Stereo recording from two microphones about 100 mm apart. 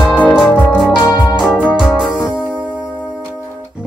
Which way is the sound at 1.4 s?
10° left (ahead or behind).